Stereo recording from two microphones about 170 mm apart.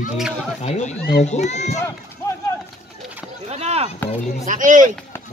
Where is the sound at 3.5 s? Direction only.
40° right (ahead or behind).